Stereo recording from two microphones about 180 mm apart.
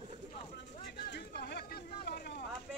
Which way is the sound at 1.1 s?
65° left (ahead or behind).